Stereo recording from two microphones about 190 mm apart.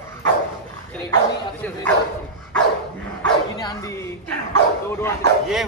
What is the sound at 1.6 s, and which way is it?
Speech, 10° left (ahead or behind).